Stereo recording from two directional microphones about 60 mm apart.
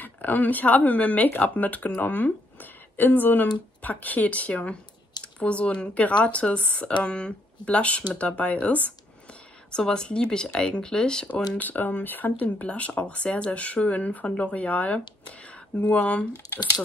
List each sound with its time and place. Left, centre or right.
0.0 s speech: left; by 11.2 s centre
11.5 s speech: left